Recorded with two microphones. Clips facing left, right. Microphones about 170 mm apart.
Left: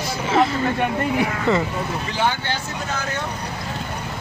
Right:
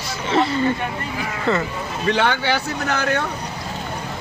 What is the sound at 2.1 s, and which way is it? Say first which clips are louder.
Speech: right 5 dB; 70° right (ahead or behind).